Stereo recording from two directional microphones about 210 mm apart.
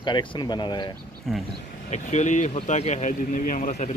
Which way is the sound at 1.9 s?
35° left (ahead or behind).